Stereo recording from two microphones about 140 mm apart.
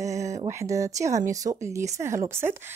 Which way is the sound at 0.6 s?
25° right (ahead or behind).